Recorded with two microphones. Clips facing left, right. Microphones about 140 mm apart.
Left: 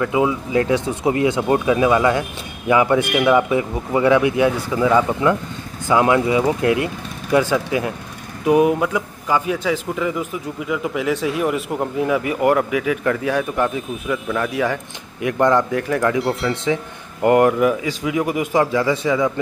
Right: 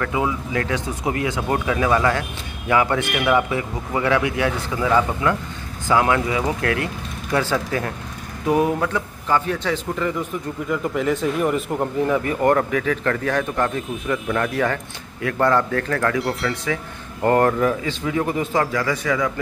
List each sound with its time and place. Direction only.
0.0 s a man's voice: 20° left (ahead or behind)
16.2 s speech: centre (ahead or behind)
16.6 s a man's voice: 15° left (ahead or behind)